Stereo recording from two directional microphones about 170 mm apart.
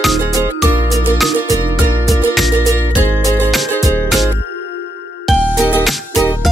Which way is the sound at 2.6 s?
20° right (ahead or behind).